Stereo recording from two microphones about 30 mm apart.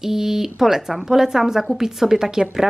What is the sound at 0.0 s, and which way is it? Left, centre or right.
Speech, centre.